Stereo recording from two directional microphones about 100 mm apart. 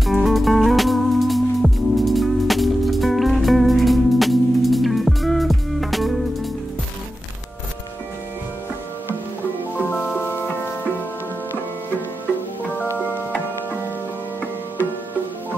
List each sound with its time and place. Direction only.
0.0 s music: centre (ahead or behind)
12.7 s music: 20° left (ahead or behind)